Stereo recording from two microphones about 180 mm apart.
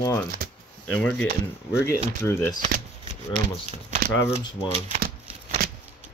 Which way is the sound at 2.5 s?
50° right (ahead or behind).